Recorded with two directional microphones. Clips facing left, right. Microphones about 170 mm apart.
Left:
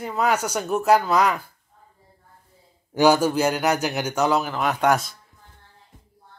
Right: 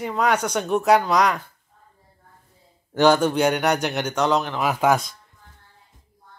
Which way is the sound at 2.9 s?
10° left (ahead or behind).